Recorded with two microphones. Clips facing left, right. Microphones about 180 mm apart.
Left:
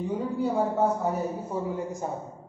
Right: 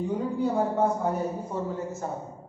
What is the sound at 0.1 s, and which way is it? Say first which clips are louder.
Speech: left 1 dB; 5° left (ahead or behind).